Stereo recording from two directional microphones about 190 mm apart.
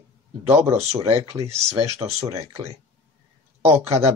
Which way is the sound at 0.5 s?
15° right (ahead or behind).